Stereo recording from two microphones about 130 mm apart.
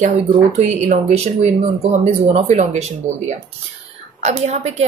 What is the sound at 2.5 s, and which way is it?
A woman's voice, 60° right (ahead or behind).